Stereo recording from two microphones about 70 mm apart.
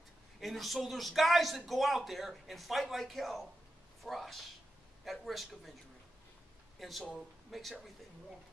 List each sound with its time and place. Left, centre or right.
0.4 s speech: centre
6.8 s speech: centre